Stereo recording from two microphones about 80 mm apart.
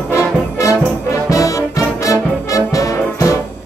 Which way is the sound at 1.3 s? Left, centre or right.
Left.